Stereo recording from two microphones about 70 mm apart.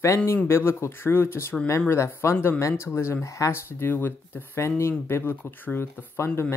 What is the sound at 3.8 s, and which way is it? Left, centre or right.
Speech, left.